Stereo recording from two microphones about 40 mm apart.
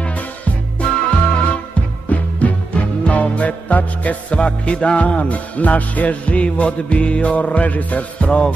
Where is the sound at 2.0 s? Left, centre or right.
Left.